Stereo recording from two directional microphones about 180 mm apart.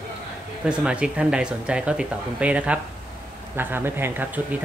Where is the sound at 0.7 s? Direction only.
5° right (ahead or behind).